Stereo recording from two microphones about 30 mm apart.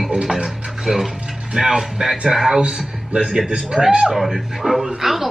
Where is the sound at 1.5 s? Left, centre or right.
Centre.